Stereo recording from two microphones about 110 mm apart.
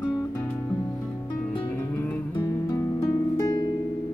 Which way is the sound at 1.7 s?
15° left (ahead or behind).